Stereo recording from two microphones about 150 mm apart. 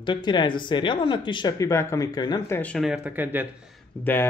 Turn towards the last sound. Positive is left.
turn(degrees=10)  # may be behind; listen again after turning